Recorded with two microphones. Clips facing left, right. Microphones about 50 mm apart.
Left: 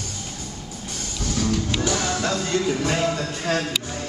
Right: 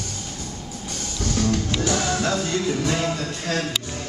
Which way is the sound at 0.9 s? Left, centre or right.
Centre.